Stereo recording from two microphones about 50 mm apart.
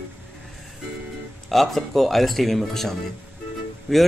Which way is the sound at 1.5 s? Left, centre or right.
Centre.